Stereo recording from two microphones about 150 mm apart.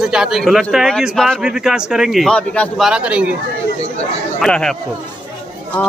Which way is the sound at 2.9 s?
5° right (ahead or behind).